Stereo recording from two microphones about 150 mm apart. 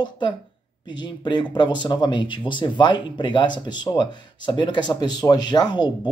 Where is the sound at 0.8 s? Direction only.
30° left (ahead or behind).